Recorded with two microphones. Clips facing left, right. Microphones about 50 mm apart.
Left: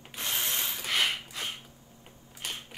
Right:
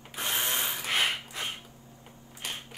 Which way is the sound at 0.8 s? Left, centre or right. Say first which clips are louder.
Left 1 dB; right.